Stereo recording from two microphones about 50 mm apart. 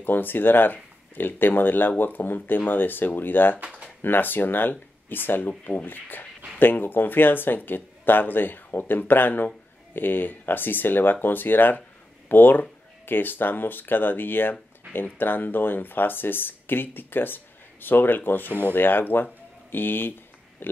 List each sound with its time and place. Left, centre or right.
0.0 s speech: left
5.5 s speech: left
5.9 s speech: left